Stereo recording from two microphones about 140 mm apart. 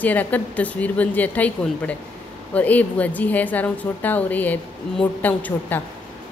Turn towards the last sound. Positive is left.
turn(degrees=10)  # may be behind; listen again after turning